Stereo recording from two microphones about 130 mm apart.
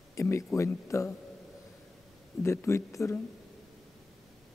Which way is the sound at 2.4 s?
20° left (ahead or behind).